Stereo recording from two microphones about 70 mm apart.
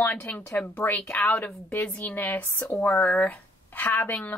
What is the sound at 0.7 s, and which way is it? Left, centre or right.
Speech, left.